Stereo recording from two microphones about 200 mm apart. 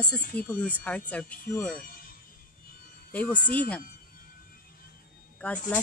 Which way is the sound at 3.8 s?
45° left (ahead or behind).